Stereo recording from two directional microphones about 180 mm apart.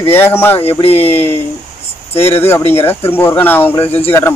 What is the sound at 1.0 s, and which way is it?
Speech, 10° left (ahead or behind).